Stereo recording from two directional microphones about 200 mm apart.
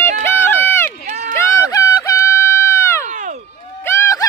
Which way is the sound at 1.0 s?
45° right (ahead or behind).